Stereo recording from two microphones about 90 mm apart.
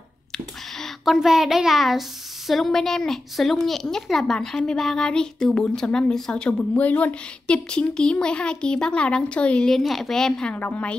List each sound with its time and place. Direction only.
0.3 s a child's voice: 5° left (ahead or behind)
9.8 s a woman's voice: centre (ahead or behind)
10.5 s a child's voice: 15° left (ahead or behind)